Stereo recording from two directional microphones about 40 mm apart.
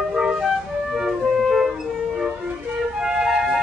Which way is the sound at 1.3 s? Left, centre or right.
Centre.